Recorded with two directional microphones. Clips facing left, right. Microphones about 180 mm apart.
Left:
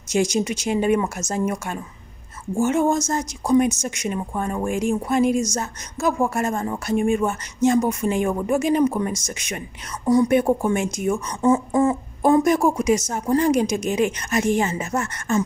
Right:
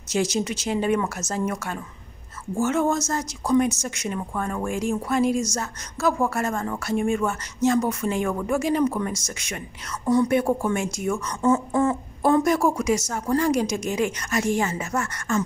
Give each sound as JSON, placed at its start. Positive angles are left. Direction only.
{"t": 0.1, "sound": "speech", "side_deg": 15}